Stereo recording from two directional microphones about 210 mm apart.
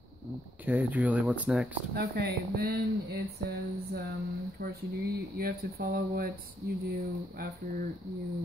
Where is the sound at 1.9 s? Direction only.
50° right (ahead or behind).